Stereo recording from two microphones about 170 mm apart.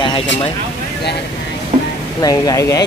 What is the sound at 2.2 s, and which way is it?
Speech, 20° left (ahead or behind).